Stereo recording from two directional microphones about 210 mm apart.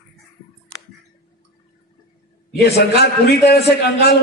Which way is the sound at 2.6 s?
50° left (ahead or behind).